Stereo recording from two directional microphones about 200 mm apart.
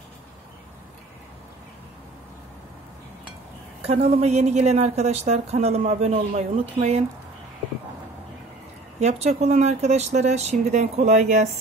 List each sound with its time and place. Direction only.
3.8 s a woman's voice: 30° right (ahead or behind)
9.4 s a woman's voice: 35° right (ahead or behind)